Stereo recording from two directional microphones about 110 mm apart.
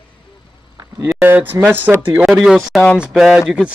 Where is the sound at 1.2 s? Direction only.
20° right (ahead or behind).